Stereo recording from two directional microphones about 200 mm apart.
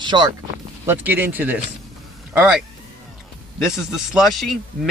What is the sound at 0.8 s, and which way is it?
Speech, 10° right (ahead or behind).